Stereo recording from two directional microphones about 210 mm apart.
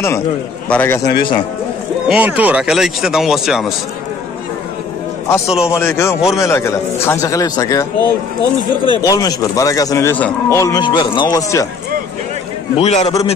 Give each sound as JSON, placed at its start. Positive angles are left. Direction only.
{"t": 0.7, "sound": "speech", "side_deg": 10}
{"t": 1.1, "sound": "a man's voice", "side_deg": 25}
{"t": 2.0, "sound": "speech", "side_deg": -5}
{"t": 5.7, "sound": "speech", "side_deg": 10}
{"t": 12.7, "sound": "a man's voice", "side_deg": 30}